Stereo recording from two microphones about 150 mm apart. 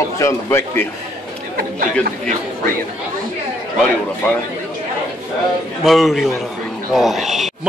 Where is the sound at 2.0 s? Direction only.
70° right (ahead or behind).